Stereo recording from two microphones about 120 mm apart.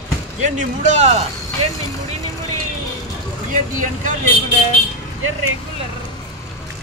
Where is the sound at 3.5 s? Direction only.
90° right.